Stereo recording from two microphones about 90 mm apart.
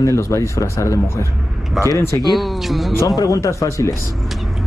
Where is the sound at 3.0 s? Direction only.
40° left (ahead or behind).